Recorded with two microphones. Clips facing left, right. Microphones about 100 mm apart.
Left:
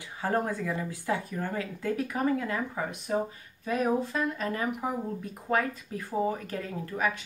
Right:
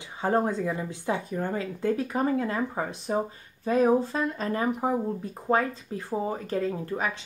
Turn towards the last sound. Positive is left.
turn(degrees=-25)  # may be behind; listen again after turning